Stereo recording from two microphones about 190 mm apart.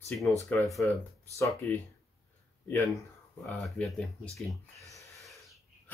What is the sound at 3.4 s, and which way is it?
Speech, centre (ahead or behind).